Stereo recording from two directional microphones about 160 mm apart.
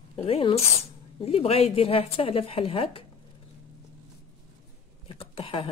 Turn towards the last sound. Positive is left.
turn(degrees=35)  # may be behind; listen again after turning